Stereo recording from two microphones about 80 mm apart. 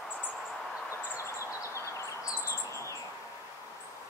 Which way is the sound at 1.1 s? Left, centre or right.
Left.